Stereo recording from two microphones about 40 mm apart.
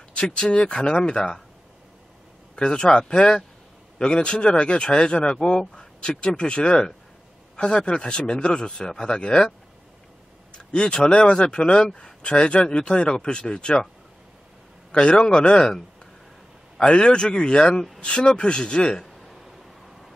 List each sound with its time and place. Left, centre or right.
0.1 s speech: left
2.5 s speech: left
10.5 s speech: left
14.9 s speech: left
16.8 s speech: left